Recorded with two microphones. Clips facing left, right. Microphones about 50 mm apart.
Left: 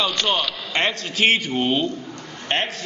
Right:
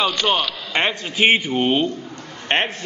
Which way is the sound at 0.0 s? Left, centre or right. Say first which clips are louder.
Right 2 dB; centre.